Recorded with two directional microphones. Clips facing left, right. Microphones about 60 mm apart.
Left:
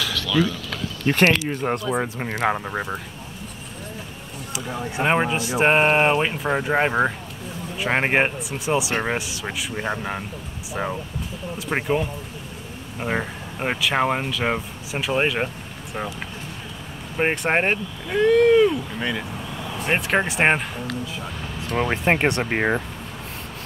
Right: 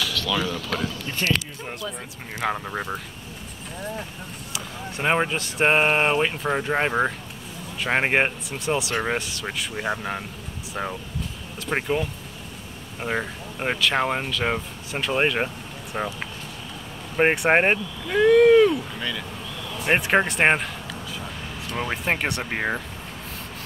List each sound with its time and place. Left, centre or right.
1.0 s speech: left
2.1 s speech: left
2.4 s speech: centre
4.9 s speech: centre
17.2 s speech: centre
18.1 s a sound: centre
18.9 s vehicle: left
20.0 s a sound: centre
21.7 s speech: left